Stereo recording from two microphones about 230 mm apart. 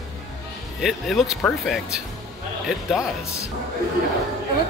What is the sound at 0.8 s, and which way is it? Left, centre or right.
Speech, centre.